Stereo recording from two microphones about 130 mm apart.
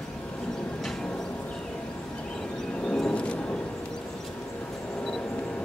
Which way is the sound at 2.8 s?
5° left (ahead or behind).